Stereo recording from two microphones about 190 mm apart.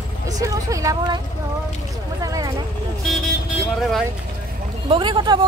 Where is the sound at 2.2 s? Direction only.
20° right (ahead or behind).